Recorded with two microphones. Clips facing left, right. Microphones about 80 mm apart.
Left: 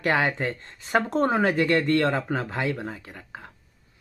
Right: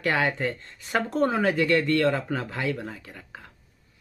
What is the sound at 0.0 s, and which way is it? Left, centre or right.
Speech, left.